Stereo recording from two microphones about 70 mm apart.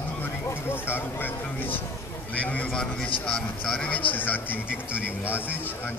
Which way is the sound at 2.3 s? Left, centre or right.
Centre.